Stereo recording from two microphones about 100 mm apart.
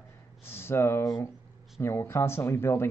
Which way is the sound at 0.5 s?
25° left (ahead or behind).